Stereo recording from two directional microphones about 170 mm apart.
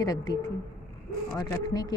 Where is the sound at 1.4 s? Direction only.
25° left (ahead or behind).